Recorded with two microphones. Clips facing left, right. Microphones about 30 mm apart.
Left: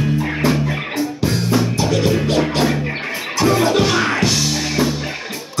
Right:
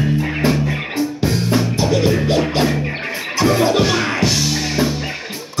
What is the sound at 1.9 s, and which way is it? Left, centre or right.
Music, centre.